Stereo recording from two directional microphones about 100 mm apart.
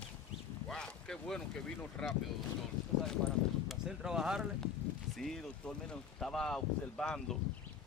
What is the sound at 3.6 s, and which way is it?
Speech, 5° right (ahead or behind).